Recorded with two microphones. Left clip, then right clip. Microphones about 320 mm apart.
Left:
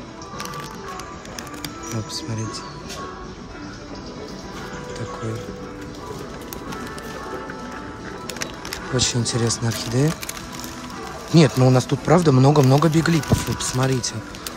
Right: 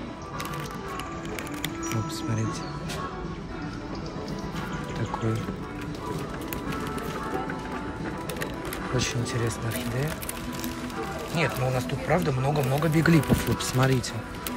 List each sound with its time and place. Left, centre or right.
8.9 s speech: centre
11.3 s speech: centre
13.0 s speech: centre